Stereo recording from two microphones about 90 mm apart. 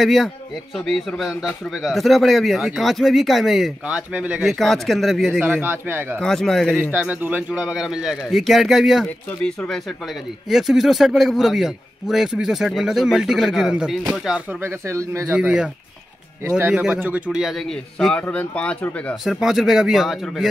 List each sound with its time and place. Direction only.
0.0 s a man's voice: centre (ahead or behind)
3.8 s a man's voice: 15° right (ahead or behind)
4.5 s a man's voice: 5° left (ahead or behind)
5.4 s speech: 20° right (ahead or behind)
6.1 s a man's voice: 5° left (ahead or behind)
6.8 s a man's voice: 20° right (ahead or behind); by 9.0 s centre (ahead or behind)
10.5 s a man's voice: 5° right (ahead or behind)
14.6 s speech: 30° right (ahead or behind)
15.2 s a man's voice: 15° right (ahead or behind)
17.6 s a man's voice: 5° left (ahead or behind)
19.2 s a man's voice: 5° right (ahead or behind)